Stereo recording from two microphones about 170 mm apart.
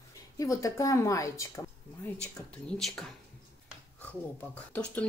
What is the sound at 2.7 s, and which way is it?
Speech, centre (ahead or behind).